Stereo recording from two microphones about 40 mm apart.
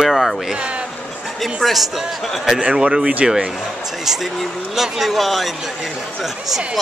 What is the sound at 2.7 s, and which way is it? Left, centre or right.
Speech, centre.